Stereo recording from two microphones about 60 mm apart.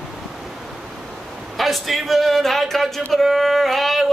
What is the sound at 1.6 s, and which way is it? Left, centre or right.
Speech, centre.